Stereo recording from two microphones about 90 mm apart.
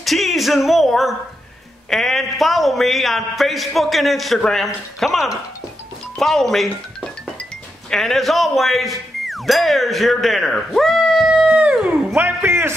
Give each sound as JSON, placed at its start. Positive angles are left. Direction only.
{"t": 0.0, "sound": "music", "side_deg": 0}
{"t": 1.9, "sound": "a man's voice", "side_deg": 0}
{"t": 7.9, "sound": "speech", "side_deg": 5}
{"t": 12.2, "sound": "a sound", "side_deg": -25}